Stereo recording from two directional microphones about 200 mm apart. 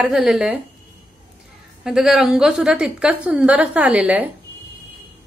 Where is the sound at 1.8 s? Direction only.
5° right (ahead or behind).